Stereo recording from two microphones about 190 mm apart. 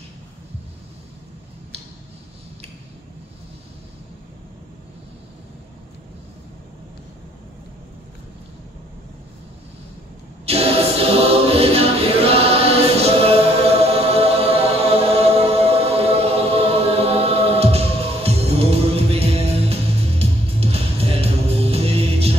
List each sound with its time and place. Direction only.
10.4 s choir: 30° right (ahead or behind)